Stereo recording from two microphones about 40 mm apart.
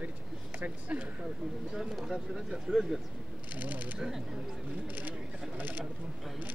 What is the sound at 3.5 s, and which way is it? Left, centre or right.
Speech, right.